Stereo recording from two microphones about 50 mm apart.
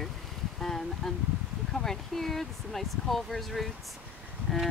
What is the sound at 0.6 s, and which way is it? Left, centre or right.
Speech, centre.